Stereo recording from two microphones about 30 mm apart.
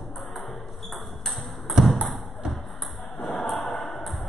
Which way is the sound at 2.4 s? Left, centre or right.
Right.